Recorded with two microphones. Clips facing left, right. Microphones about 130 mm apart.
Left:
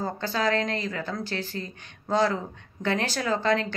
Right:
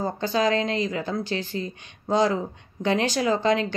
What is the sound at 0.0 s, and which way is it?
A woman's voice, 15° right (ahead or behind).